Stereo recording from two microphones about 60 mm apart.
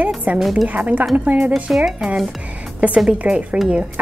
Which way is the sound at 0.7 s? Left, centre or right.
Right.